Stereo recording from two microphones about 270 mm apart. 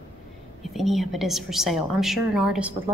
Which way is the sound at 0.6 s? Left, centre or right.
Centre.